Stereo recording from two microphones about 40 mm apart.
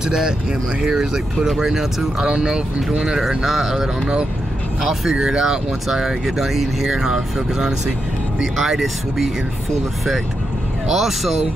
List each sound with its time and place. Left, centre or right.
0.0 s speech: centre
2.2 s speech: right
5.2 s speech: centre
10.9 s speech: centre